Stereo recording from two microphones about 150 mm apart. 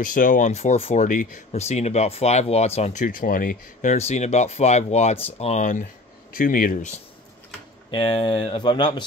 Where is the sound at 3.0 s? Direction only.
70° left (ahead or behind); by 5.8 s 55° left (ahead or behind).